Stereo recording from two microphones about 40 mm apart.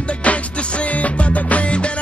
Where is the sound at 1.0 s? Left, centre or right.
Left.